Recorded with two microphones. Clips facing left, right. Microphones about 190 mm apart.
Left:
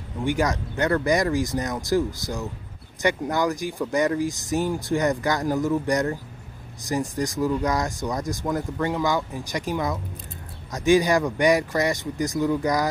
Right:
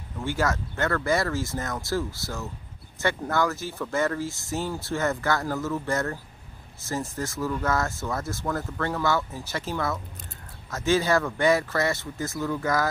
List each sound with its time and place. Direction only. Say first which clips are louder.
0.2 s speech: left 3 dB; 15° left (ahead or behind)